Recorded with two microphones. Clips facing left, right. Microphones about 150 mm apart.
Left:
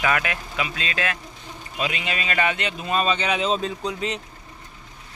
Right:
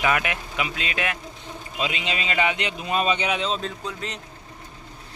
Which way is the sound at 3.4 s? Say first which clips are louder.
Left 4 dB; 10° left (ahead or behind).